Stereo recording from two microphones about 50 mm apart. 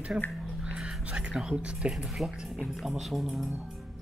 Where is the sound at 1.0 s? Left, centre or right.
Right.